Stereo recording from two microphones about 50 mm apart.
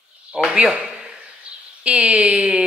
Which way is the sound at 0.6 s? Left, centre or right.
Centre.